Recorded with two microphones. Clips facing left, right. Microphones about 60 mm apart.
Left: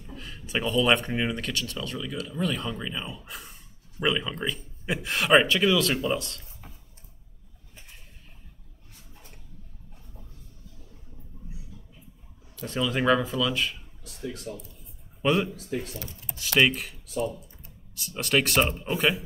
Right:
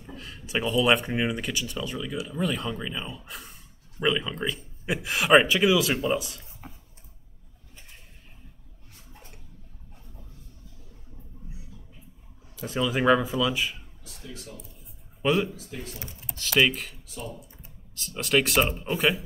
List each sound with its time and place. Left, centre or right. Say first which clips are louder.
0.1 s speech: right 1 dB; centre
12.5 s speech: right 1 dB; centre
14.0 s speech: left 7 dB; left
15.2 s speech: even; centre
17.9 s speech: right 1 dB; centre